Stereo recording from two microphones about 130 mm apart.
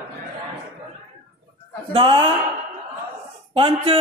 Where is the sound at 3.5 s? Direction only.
45° right (ahead or behind).